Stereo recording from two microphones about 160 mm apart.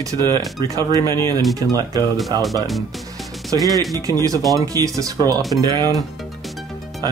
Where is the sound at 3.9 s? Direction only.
20° right (ahead or behind).